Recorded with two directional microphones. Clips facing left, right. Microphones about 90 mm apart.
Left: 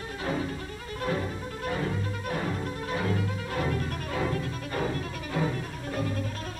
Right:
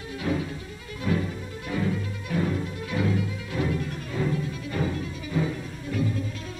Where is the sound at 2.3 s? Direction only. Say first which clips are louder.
Right 5 dB; 50° left (ahead or behind).